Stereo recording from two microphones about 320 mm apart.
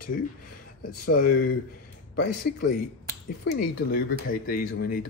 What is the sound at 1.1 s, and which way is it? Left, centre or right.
Speech, left.